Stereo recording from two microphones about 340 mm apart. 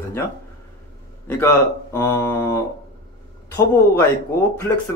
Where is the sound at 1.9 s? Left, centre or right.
Centre.